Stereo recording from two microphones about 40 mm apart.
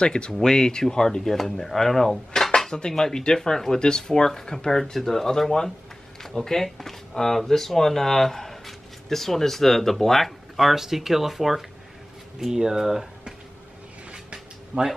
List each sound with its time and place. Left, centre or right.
0.0 s speech: left
1.6 s cutlery: centre
2.9 s speech: centre
14.1 s a sound: centre